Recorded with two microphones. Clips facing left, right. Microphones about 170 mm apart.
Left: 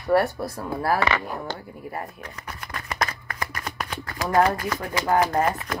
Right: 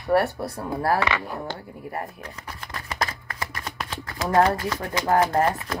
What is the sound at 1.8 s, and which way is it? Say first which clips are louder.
Speech: right 3 dB; 20° right (ahead or behind).